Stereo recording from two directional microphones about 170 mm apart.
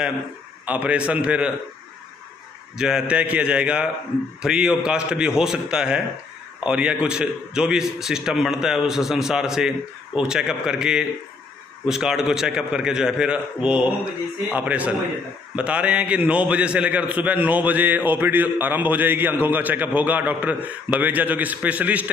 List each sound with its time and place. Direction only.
0.7 s a man's voice: 10° right (ahead or behind)
2.8 s a man's voice: 5° right (ahead or behind)